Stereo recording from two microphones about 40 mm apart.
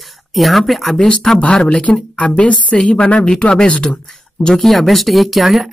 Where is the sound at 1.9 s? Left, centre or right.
Left.